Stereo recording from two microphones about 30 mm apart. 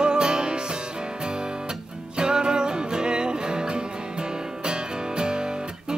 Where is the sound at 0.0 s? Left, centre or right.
Right.